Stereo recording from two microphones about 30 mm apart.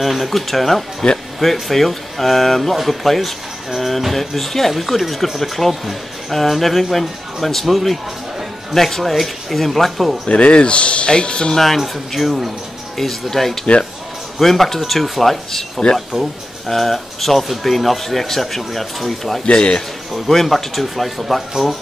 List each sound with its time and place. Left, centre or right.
0.0 s speech: centre
10.2 s speech: left
11.5 s speech: centre
19.4 s speech: left
20.2 s a man's voice: centre